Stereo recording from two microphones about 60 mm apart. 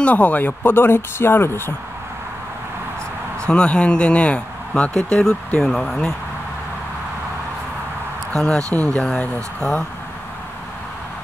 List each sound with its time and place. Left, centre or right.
0.0 s speech: left
0.5 s speech: left
3.4 s speech: centre
4.9 s speech: centre
8.4 s speech: centre